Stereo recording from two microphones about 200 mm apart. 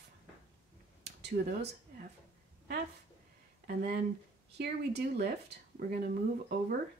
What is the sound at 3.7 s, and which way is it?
Speech, 45° right (ahead or behind).